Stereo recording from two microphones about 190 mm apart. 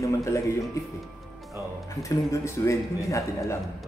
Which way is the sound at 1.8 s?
15° left (ahead or behind).